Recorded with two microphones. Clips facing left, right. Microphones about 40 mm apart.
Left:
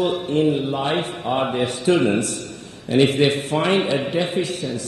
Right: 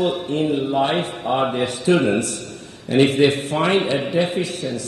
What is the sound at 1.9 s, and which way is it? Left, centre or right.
Speech, right.